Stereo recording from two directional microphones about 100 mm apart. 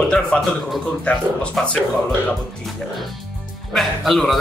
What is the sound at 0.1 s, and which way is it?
Speech, 5° left (ahead or behind).